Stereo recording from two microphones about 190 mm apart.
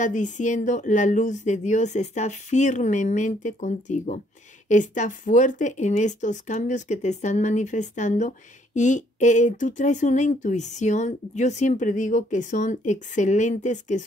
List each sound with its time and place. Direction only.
0.0 s speech: 40° left (ahead or behind)